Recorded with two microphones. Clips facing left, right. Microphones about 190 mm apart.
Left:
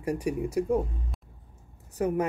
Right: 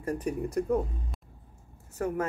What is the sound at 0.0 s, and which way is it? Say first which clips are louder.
Speech: left 2 dB; 10° left (ahead or behind).